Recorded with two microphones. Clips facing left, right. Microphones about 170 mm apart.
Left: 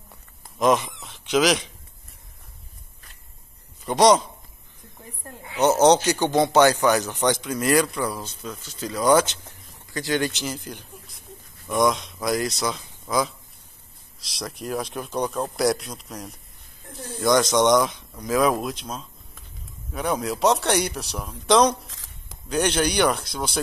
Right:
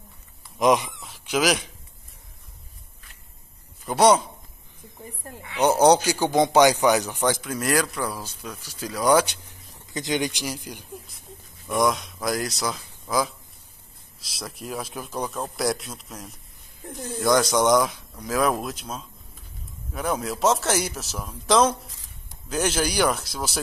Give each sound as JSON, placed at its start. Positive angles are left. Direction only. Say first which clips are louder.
{"t": 0.6, "sound": "speech", "louder": "even", "side_deg": -15}
{"t": 3.8, "sound": "speech", "louder": "left 1 dB", "side_deg": -5}
{"t": 5.6, "sound": "speech", "louder": "left 1 dB", "side_deg": -10}
{"t": 7.2, "sound": "speech", "louder": "left 2 dB", "side_deg": -5}
{"t": 21.9, "sound": "a sound", "louder": "left 2 dB", "side_deg": 90}
{"t": 22.5, "sound": "speech", "louder": "left 2 dB", "side_deg": 0}